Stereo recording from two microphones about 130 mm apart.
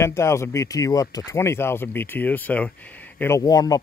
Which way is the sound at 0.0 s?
20° left (ahead or behind).